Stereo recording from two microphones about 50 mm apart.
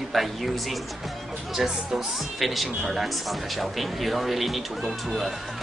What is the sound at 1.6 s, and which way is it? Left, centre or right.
Speech, centre.